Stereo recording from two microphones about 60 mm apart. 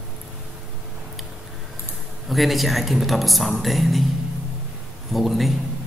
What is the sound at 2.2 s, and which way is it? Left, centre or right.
Speech, centre.